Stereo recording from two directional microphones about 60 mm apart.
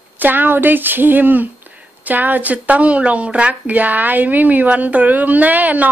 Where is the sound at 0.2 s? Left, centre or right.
Right.